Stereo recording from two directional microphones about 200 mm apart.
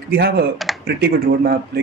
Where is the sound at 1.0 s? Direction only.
50° right (ahead or behind).